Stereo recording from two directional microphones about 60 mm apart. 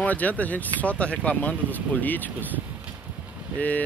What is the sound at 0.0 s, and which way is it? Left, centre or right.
Speech, left.